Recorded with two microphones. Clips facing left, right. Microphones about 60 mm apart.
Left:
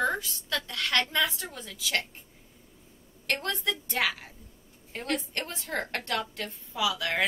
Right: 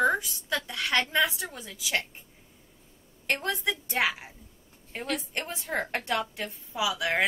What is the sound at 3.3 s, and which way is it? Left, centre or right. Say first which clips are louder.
A woman's voice: right 1 dB; centre.